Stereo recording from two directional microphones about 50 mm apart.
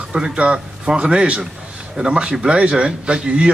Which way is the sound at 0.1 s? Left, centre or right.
Centre.